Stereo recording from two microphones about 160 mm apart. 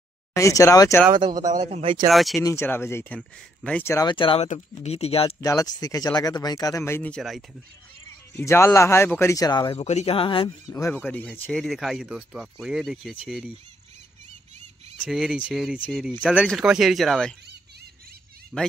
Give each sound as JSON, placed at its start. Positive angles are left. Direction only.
{"t": 0.3, "sound": "speech", "side_deg": 20}
{"t": 1.1, "sound": "speech", "side_deg": -25}
{"t": 1.5, "sound": "speech", "side_deg": -40}
{"t": 2.0, "sound": "speech", "side_deg": 0}
{"t": 2.4, "sound": "speech", "side_deg": 15}
{"t": 4.1, "sound": "speech", "side_deg": 30}
{"t": 4.4, "sound": "speech", "side_deg": 40}
{"t": 5.4, "sound": "speech", "side_deg": 20}
{"t": 8.5, "sound": "speech", "side_deg": 15}
{"t": 9.8, "sound": "speech", "side_deg": 40}
{"t": 10.7, "sound": "speech", "side_deg": 15}
{"t": 15.0, "sound": "speech", "side_deg": 0}
{"t": 18.5, "sound": "speech", "side_deg": -5}